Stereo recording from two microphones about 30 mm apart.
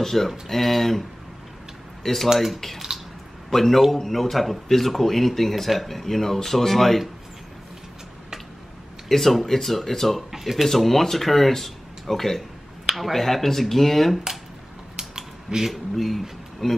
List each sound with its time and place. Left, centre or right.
0.0 s speech: centre
2.3 s speech: centre
3.5 s speech: centre
9.1 s speech: centre
10.7 s speech: centre
15.0 s mechanisms: centre
15.7 s speech: centre